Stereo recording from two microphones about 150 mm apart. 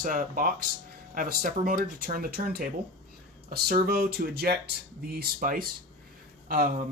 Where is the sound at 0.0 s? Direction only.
70° right (ahead or behind).